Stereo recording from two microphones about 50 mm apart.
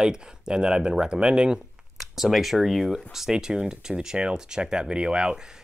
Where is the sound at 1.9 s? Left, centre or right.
Centre.